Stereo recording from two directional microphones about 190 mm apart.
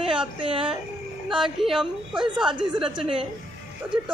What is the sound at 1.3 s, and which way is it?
A woman's voice, centre (ahead or behind).